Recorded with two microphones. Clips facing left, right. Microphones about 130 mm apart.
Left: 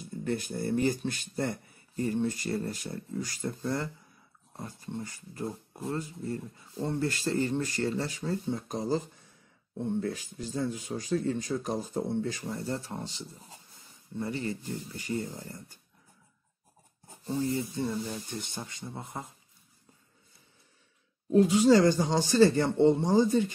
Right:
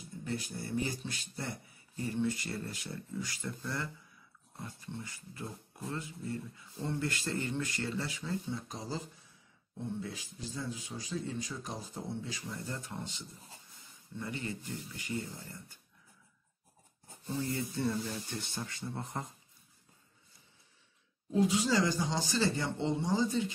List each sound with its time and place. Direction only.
0.2 s speech: 50° left (ahead or behind)
12.4 s speech: 35° left (ahead or behind)
17.5 s speech: 15° left (ahead or behind)
21.3 s speech: 55° left (ahead or behind)